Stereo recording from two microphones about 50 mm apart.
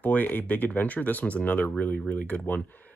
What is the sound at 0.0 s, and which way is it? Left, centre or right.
Speech, left.